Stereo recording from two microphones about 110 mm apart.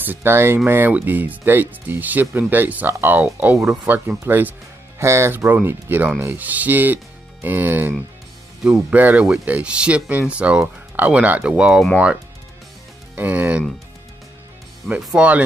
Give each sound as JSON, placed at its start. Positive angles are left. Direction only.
{"t": 0.0, "sound": "speech", "side_deg": -20}
{"t": 13.1, "sound": "speech", "side_deg": -15}
{"t": 15.0, "sound": "speech", "side_deg": -5}